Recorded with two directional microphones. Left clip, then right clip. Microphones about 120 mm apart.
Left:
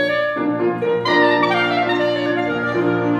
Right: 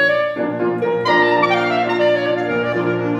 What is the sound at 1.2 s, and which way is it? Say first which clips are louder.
Music: left 1 dB; 20° left (ahead or behind).